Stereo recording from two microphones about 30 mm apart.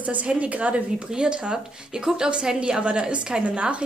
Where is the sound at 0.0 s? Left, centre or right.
Right.